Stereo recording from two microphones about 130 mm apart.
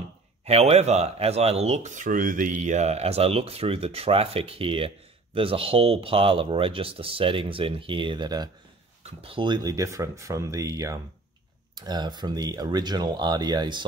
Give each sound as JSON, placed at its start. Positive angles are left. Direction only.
{"t": 0.5, "sound": "speech", "side_deg": -55}
{"t": 9.0, "sound": "speech", "side_deg": -45}